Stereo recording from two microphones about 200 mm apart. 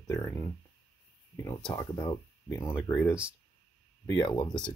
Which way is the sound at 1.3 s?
15° left (ahead or behind).